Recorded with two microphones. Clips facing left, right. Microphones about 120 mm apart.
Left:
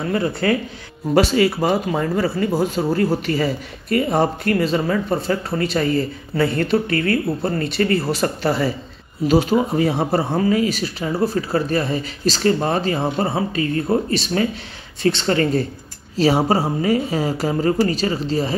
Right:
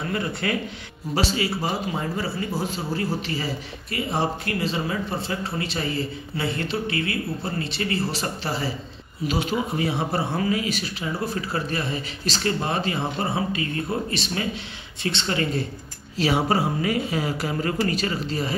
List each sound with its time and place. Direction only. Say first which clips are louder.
0.1 s speech: left 8 dB; 35° left (ahead or behind)
1.1 s speech: left 9 dB; 55° left (ahead or behind); by 18.5 s 30° left (ahead or behind)